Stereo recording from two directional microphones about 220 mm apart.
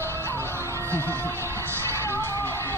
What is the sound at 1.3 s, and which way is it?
Music, 10° right (ahead or behind).